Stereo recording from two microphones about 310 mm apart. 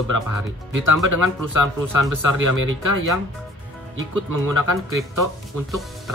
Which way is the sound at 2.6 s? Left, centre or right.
Right.